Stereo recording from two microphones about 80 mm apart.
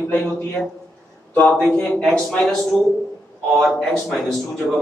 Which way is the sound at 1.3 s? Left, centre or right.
Centre.